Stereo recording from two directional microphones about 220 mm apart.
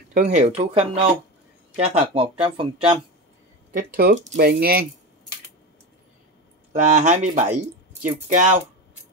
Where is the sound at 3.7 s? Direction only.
40° right (ahead or behind).